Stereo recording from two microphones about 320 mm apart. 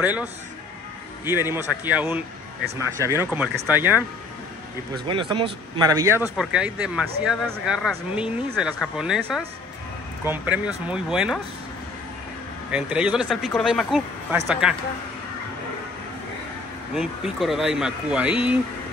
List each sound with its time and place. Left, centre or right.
0.0 s speech: centre
2.6 s speech: right
3.0 s speech: centre
12.7 s speech: centre
16.9 s speech: centre